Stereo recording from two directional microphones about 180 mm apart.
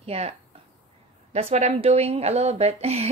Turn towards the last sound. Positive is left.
turn(degrees=-35)  # may be behind; listen again after turning